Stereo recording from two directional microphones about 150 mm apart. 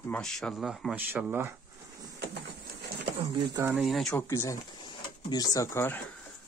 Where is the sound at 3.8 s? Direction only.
Centre (ahead or behind).